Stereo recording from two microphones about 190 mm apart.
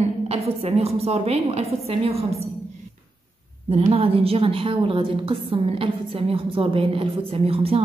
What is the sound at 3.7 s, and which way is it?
A woman's voice, 30° right (ahead or behind).